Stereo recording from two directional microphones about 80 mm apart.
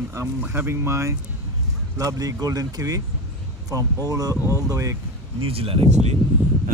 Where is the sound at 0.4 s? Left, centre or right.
Right.